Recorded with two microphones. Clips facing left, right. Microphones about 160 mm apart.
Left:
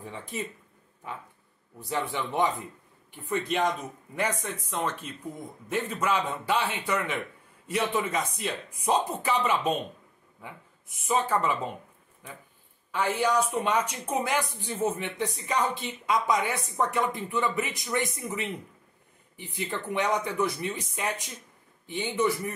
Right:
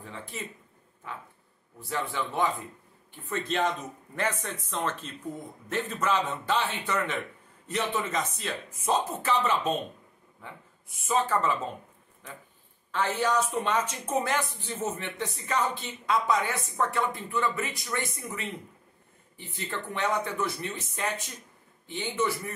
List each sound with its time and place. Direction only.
0.0 s a woman's voice: 15° left (ahead or behind)
1.8 s a man's voice: 15° left (ahead or behind)
12.9 s a woman's voice: 10° left (ahead or behind)